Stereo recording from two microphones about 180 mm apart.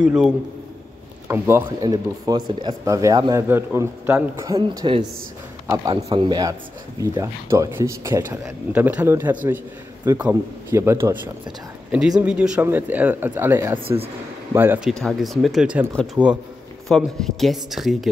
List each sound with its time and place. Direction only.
0.0 s speech: 5° right (ahead or behind); by 5.0 s 30° right (ahead or behind)
6.0 s speech: 30° right (ahead or behind)
13.8 s speech: 30° right (ahead or behind)
14.5 s speech: 10° right (ahead or behind)
15.0 s speech: centre (ahead or behind)